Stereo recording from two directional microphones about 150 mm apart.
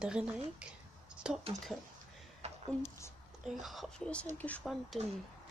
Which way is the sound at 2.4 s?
45° right (ahead or behind).